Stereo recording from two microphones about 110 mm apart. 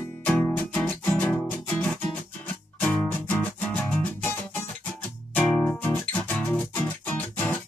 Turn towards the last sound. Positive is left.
turn(degrees=15)  # may be behind; listen again after turning